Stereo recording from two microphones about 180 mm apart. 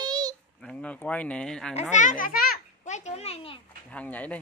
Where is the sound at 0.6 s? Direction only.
5° left (ahead or behind).